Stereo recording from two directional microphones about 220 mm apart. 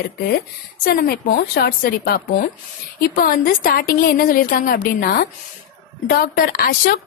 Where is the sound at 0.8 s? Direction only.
45° left (ahead or behind).